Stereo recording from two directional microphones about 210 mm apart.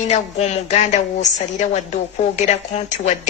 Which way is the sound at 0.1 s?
30° left (ahead or behind).